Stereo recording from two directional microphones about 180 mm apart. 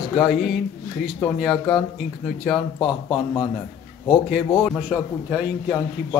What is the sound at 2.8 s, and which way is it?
Speech, 25° left (ahead or behind).